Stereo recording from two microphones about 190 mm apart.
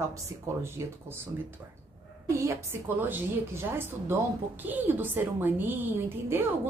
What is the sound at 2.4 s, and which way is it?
A woman's voice, 15° right (ahead or behind).